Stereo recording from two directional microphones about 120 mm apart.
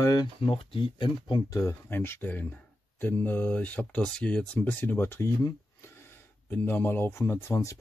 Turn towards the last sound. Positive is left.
turn(degrees=25)  # may be behind; listen again after turning